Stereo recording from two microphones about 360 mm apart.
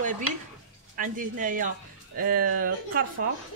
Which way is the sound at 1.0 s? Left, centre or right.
Right.